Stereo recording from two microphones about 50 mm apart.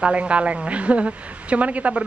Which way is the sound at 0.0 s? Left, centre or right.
Right.